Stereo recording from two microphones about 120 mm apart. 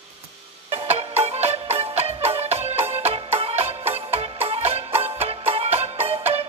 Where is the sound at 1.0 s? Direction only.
60° right (ahead or behind).